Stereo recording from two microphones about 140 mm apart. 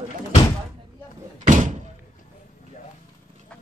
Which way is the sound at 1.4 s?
60° right (ahead or behind).